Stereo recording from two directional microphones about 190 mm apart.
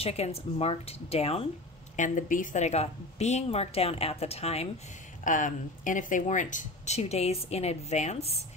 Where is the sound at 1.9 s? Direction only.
40° left (ahead or behind).